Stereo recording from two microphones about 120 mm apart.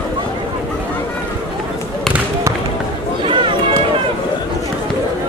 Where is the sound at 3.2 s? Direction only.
45° right (ahead or behind).